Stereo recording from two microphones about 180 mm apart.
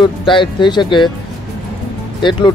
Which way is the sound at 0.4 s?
25° left (ahead or behind).